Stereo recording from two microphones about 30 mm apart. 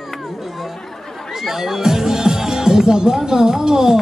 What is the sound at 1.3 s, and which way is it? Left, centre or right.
Speech, centre.